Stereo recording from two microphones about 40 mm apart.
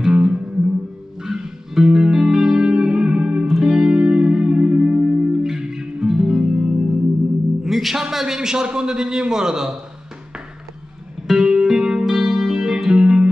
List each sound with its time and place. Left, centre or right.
0.0 s music: right
3.4 s music: centre
3.9 s music: right; by 8.0 s centre
8.1 s a sound: centre
8.6 s a man's voice: centre
11.2 s music: centre
13.0 s music: right